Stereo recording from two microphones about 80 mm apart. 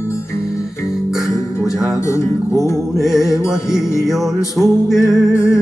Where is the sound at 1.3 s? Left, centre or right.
Left.